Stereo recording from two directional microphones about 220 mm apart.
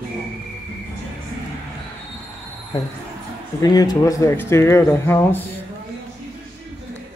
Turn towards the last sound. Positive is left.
turn(degrees=10)  # may be behind; listen again after turning